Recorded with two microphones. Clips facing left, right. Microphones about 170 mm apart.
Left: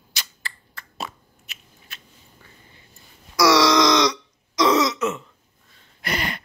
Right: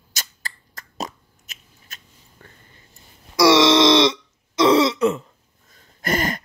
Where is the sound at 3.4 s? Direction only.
25° right (ahead or behind).